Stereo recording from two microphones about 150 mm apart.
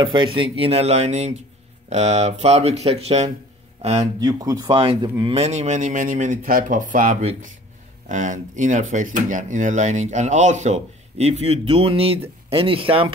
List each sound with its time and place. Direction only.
0.0 s speech: 35° right (ahead or behind)
4.2 s speech: 25° right (ahead or behind)
4.6 s speech: 40° right (ahead or behind)